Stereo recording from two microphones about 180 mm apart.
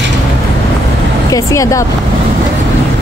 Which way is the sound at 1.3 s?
20° left (ahead or behind).